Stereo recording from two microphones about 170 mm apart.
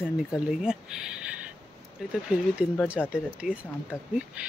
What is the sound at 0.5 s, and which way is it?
Speech, 5° right (ahead or behind).